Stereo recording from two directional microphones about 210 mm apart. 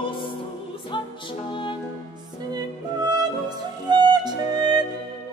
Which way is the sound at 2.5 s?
20° right (ahead or behind).